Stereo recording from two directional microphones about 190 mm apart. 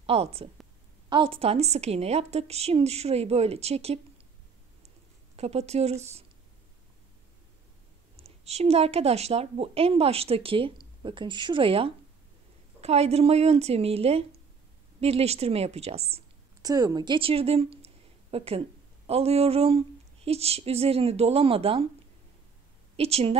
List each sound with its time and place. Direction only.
0.0 s a woman's voice: 30° right (ahead or behind)
5.3 s a woman's voice: 35° right (ahead or behind)
8.2 s a woman's voice: 35° right (ahead or behind)
16.6 s a woman's voice: 20° right (ahead or behind)
22.9 s a woman's voice: 30° right (ahead or behind)